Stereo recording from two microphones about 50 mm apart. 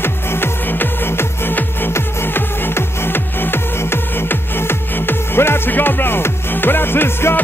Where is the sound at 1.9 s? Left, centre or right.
Left.